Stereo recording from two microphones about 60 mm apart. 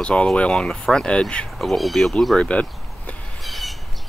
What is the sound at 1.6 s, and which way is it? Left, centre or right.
Speech, centre.